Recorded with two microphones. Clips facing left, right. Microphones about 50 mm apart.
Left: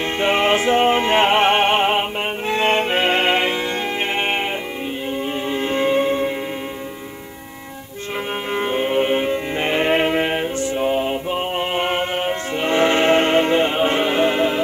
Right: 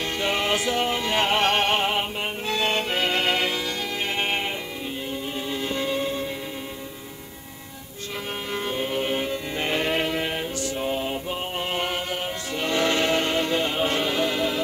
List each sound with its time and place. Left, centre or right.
0.2 s music: left
5.5 s music: left
8.5 s music: left